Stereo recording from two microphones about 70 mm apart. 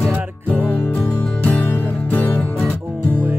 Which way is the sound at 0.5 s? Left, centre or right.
Left.